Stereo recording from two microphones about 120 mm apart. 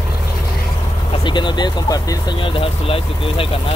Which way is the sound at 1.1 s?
40° left (ahead or behind).